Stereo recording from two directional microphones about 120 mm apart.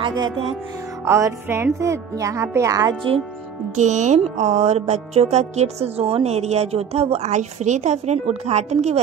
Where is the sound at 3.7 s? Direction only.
90° right.